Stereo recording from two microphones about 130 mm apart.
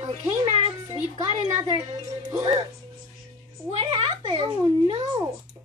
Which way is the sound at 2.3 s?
35° right (ahead or behind).